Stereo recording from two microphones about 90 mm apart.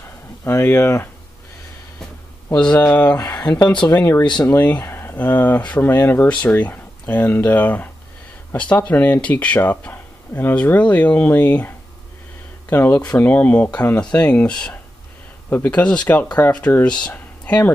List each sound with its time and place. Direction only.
0.4 s speech: 30° left (ahead or behind)
2.5 s speech: 15° left (ahead or behind)
3.2 s speech: 45° left (ahead or behind)
4.2 s speech: 55° left (ahead or behind)
4.5 s speech: 20° left (ahead or behind)
6.2 s speech: 15° left (ahead or behind)